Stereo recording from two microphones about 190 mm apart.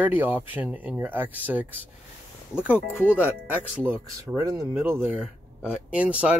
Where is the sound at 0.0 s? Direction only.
10° right (ahead or behind).